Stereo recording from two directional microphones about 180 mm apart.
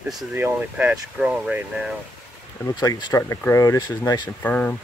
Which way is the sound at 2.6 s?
20° left (ahead or behind).